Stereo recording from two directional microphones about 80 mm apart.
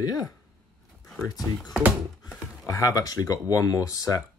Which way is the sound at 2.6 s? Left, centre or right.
Left.